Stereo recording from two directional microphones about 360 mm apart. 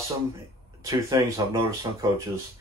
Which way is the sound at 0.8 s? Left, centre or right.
Centre.